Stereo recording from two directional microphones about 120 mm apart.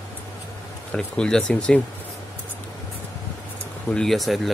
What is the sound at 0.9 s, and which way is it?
Speech, 5° left (ahead or behind).